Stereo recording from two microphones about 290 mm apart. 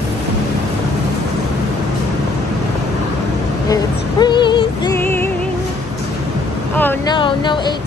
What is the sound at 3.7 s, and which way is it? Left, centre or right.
Music, centre.